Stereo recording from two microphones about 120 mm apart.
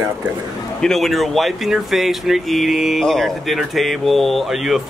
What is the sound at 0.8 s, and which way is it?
Speech, centre (ahead or behind).